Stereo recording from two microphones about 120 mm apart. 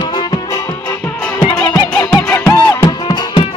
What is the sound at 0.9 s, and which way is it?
Music, 10° left (ahead or behind).